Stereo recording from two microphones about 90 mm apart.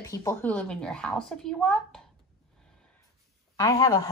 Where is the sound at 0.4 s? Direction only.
15° left (ahead or behind).